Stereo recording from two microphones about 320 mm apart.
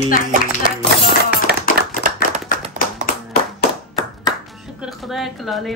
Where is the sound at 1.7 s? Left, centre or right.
Right.